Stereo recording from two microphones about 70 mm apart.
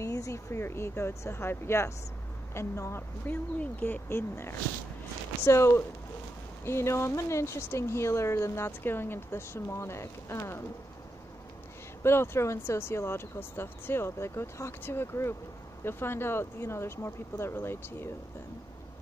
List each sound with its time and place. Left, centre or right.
0.0 s a sound: left
0.5 s speech: left
3.5 s speech: left
12.0 s speech: left